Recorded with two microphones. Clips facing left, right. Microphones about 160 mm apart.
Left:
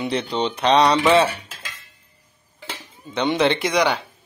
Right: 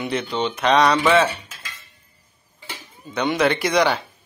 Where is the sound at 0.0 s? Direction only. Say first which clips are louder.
Left 1 dB; 30° left (ahead or behind).